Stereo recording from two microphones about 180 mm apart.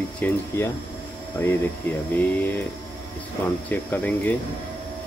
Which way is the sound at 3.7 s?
10° left (ahead or behind).